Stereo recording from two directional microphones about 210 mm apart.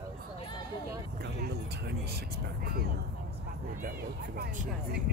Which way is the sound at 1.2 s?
50° right (ahead or behind).